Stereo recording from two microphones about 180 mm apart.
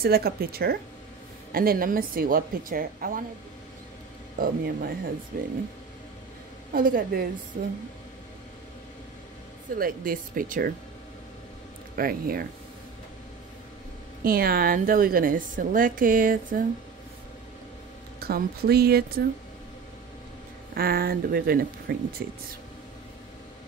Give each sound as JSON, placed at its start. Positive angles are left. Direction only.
{"t": 0.0, "sound": "a woman's voice", "side_deg": -60}
{"t": 4.4, "sound": "a woman's voice", "side_deg": -55}
{"t": 6.7, "sound": "a woman's voice", "side_deg": -50}
{"t": 9.8, "sound": "a woman's voice", "side_deg": -50}
{"t": 11.9, "sound": "speech", "side_deg": -55}
{"t": 14.2, "sound": "a woman's voice", "side_deg": -55}
{"t": 18.2, "sound": "speech", "side_deg": -55}
{"t": 20.7, "sound": "speech", "side_deg": -55}